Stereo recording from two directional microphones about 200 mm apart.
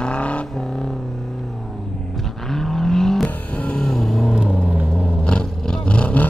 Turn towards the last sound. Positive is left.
turn(degrees=5)  # may be behind; listen again after turning